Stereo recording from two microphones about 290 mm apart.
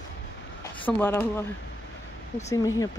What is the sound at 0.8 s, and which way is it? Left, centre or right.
Speech, centre.